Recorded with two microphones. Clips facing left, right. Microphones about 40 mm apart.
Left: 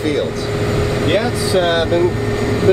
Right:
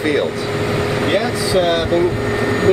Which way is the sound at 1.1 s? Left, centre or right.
Centre.